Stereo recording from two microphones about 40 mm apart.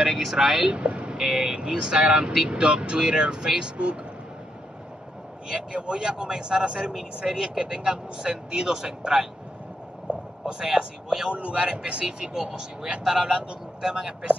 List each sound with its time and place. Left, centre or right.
0.0 s speech: centre
0.7 s speech: right
1.1 s speech: centre
2.3 s speech: centre
2.6 s speech: right
5.5 s speech: right
10.1 s a sound: right
10.4 s speech: centre
11.3 s speech: right